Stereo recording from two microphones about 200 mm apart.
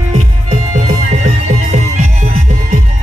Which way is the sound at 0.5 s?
35° right (ahead or behind).